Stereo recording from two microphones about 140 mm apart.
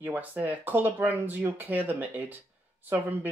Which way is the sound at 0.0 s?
10° right (ahead or behind).